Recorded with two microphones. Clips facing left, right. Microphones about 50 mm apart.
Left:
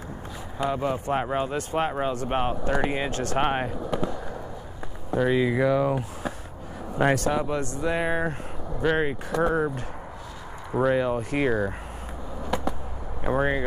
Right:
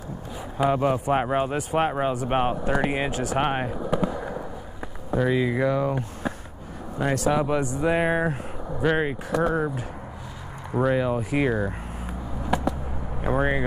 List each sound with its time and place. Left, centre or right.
0.7 s speech: right
1.7 s speech: centre
5.1 s speech: centre
8.8 s speech: centre
13.2 s speech: centre